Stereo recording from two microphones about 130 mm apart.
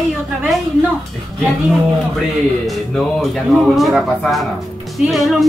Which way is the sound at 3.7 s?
Centre (ahead or behind).